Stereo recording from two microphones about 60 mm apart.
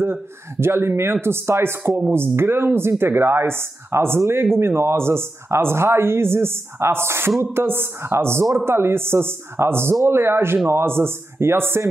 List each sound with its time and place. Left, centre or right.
0.0 s speech: right